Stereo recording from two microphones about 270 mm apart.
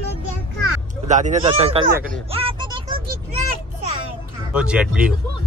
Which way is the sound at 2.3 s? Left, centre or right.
Centre.